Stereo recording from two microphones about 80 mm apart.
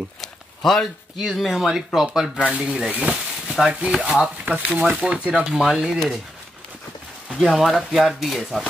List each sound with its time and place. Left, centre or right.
0.2 s speech: centre
7.3 s speech: centre